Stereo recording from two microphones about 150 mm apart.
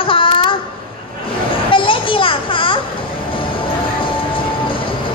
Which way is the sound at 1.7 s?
35° left (ahead or behind).